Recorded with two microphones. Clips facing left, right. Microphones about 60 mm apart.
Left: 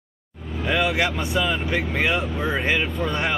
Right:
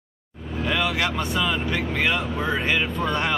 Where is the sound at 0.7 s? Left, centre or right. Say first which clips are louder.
Left 3 dB; left.